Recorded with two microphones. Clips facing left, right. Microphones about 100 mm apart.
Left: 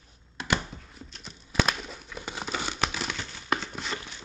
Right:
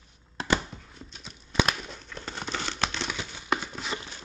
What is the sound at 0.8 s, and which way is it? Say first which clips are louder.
Crumpling: even; centre (ahead or behind).